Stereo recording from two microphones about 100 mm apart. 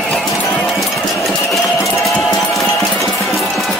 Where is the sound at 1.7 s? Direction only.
30° left (ahead or behind).